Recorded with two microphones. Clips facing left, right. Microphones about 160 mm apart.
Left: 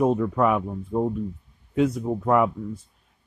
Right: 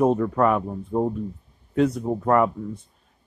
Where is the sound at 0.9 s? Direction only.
15° right (ahead or behind).